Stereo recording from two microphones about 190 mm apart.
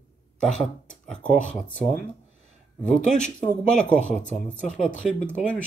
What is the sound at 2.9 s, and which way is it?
Speech, 40° left (ahead or behind).